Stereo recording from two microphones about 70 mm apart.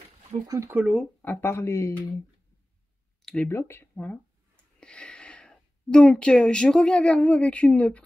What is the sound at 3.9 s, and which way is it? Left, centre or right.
Speech, left.